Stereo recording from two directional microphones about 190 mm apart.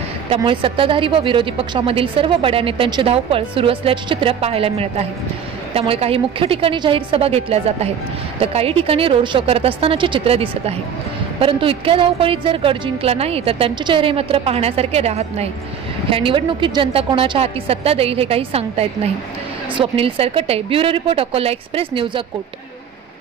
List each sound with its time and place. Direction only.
0.4 s a woman's voice: 25° right (ahead or behind)